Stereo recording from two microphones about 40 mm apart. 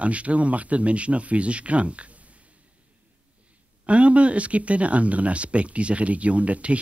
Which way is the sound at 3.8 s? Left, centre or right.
Right.